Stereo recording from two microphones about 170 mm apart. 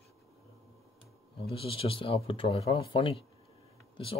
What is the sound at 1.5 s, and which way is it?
Speech, 35° left (ahead or behind).